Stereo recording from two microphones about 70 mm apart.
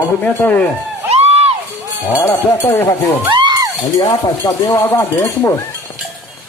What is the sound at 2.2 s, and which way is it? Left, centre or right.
Speech, left.